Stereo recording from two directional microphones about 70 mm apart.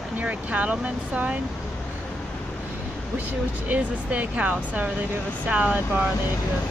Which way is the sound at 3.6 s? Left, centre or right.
Centre.